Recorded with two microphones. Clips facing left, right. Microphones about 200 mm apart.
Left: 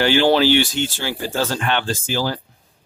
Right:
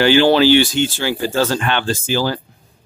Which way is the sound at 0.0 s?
90° right.